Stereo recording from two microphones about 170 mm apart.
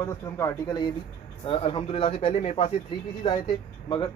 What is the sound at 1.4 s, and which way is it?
Speech, 30° left (ahead or behind).